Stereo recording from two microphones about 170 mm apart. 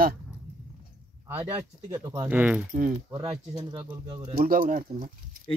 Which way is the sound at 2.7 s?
50° right (ahead or behind).